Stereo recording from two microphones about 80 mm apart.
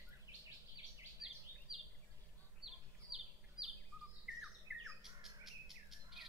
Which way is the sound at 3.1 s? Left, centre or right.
Centre.